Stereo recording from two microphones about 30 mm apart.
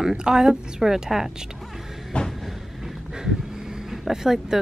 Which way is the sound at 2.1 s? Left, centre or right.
Left.